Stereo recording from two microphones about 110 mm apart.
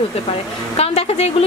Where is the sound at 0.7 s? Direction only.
65° left (ahead or behind).